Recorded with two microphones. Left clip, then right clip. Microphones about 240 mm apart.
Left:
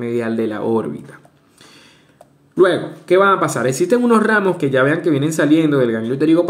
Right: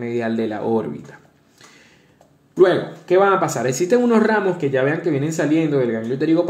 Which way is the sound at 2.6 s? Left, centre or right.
Centre.